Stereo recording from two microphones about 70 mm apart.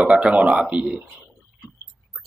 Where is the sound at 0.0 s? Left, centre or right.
Centre.